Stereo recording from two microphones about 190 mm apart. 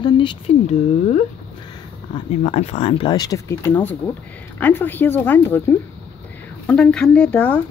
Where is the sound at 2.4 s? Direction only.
30° left (ahead or behind).